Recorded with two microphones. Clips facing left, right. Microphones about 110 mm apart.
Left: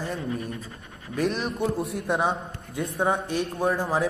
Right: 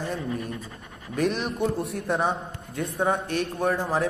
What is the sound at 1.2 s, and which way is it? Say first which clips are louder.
Speech: right 1 dB; centre (ahead or behind).